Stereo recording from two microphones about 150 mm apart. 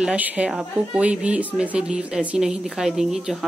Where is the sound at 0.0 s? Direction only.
10° right (ahead or behind).